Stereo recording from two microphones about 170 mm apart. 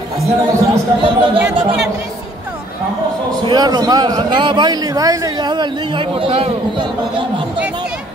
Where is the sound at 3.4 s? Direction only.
25° right (ahead or behind).